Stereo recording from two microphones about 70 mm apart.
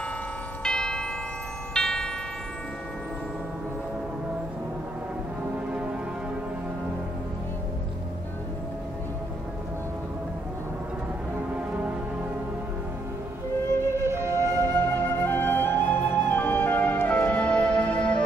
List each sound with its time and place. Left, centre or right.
0.7 s church bell: centre
1.7 s music: centre
13.9 s flute: right
14.7 s flute: left; by 18.2 s centre